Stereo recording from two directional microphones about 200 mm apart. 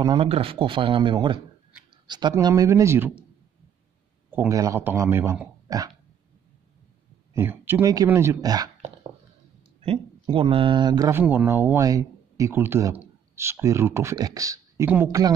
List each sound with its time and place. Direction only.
0.0 s speech: 25° right (ahead or behind)
4.3 s speech: 15° right (ahead or behind)
7.3 s speech: 10° right (ahead or behind)
9.8 s speech: 30° right (ahead or behind)